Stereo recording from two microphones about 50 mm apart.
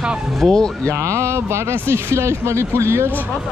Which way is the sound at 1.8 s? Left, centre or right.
Right.